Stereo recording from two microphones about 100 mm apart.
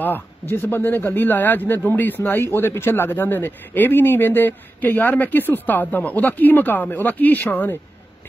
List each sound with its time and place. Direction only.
0.0 s a man's voice: 20° left (ahead or behind)